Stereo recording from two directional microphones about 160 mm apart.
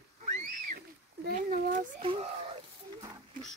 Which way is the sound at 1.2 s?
55° right (ahead or behind).